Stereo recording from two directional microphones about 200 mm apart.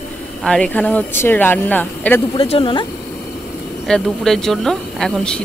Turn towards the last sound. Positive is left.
turn(degrees=5)  # may be behind; listen again after turning